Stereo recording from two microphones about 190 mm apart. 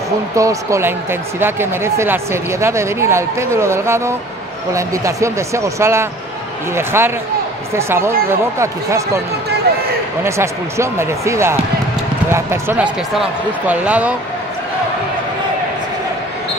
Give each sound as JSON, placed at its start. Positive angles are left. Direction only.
{"t": 0.4, "sound": "speech", "side_deg": -15}
{"t": 10.2, "sound": "speech", "side_deg": -15}